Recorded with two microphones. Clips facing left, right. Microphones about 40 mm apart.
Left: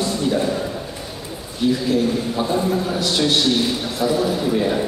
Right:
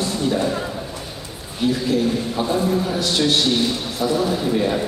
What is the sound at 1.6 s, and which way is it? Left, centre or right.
A man's voice, centre.